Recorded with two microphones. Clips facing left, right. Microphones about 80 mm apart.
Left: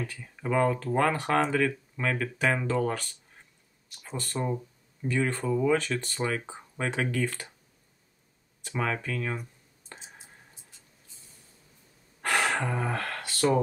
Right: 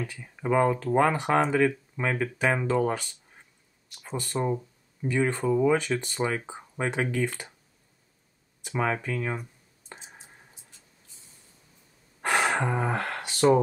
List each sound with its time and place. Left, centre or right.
0.0 s speech: centre
8.6 s a sound: centre
12.2 s gasp: centre